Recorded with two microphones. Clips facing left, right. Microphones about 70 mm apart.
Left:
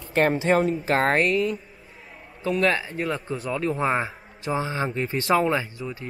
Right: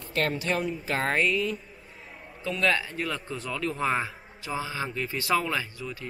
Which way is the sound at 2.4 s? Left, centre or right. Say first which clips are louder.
Left 4 dB; left.